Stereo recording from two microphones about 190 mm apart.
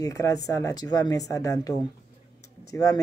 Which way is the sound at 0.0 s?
15° left (ahead or behind).